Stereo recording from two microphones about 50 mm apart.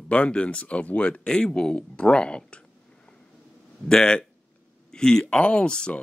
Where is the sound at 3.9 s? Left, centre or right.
Centre.